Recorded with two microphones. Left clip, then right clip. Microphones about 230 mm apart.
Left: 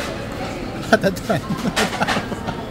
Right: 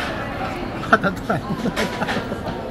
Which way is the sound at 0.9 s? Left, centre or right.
Left.